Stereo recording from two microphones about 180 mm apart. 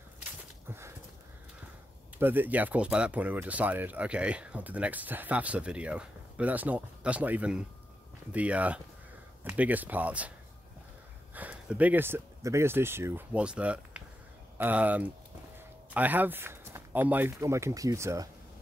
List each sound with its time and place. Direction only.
0.7 s a sound: 15° right (ahead or behind)
2.1 s speech: 10° right (ahead or behind)
11.3 s speech: 10° right (ahead or behind)